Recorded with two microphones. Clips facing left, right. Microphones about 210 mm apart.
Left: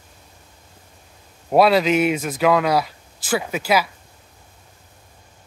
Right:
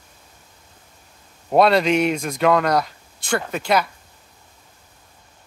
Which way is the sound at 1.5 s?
5° left (ahead or behind).